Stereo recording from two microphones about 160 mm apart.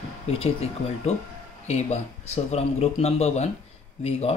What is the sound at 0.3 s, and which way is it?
Speech, 40° left (ahead or behind).